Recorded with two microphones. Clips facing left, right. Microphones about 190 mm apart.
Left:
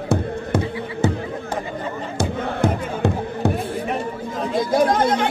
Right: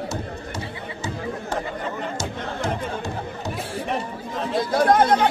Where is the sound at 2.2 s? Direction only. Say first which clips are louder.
Left 11 dB; 60° left (ahead or behind).